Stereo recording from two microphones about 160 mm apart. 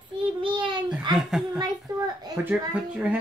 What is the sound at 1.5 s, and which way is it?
Speech, 25° right (ahead or behind).